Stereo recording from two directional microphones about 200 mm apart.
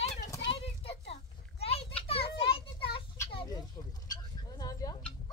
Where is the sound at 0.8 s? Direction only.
30° left (ahead or behind).